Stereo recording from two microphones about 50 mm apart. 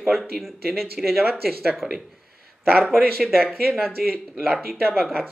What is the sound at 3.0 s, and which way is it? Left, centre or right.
Speech, centre.